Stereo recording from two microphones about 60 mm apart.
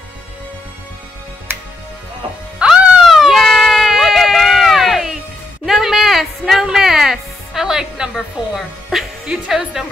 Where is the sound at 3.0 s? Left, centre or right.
Centre.